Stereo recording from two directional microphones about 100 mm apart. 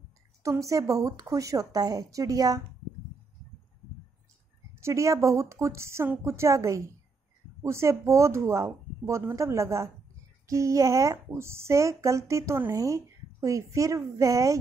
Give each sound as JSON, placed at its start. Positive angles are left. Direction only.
{"t": 0.4, "sound": "speech", "side_deg": -30}
{"t": 4.7, "sound": "a woman's voice", "side_deg": -30}